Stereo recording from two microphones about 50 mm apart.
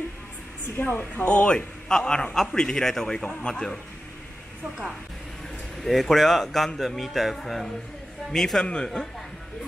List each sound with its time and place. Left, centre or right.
0.7 s a woman's voice: left
0.9 s speech: left
1.9 s a man's voice: centre
5.9 s music: centre
8.3 s a man's voice: centre